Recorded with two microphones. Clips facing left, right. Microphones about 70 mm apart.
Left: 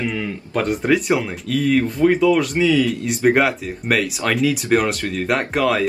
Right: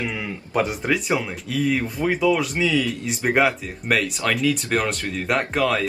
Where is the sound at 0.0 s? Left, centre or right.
Centre.